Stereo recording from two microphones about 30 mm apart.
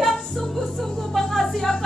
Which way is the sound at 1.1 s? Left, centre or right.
Centre.